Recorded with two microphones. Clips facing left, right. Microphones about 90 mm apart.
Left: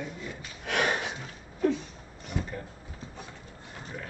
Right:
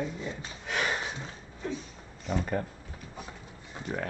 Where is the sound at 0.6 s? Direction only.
70° left (ahead or behind).